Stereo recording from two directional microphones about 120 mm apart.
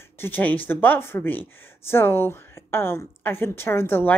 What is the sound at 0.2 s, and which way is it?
A woman's voice, 15° left (ahead or behind).